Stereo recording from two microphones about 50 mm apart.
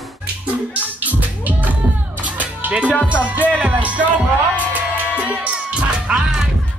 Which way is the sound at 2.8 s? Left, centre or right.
Left.